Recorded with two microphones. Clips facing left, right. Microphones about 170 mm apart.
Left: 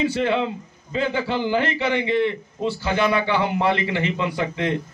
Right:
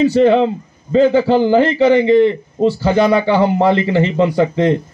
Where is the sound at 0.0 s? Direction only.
40° right (ahead or behind).